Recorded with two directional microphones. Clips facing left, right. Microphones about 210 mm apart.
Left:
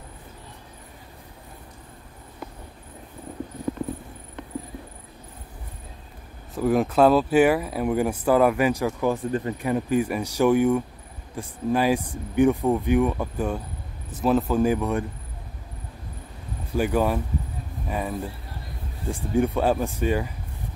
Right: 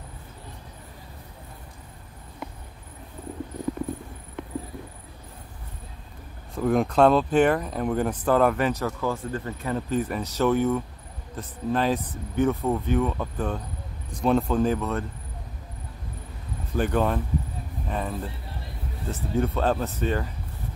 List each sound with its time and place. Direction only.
6.5 s speech: 5° left (ahead or behind)
16.7 s speech: 10° left (ahead or behind)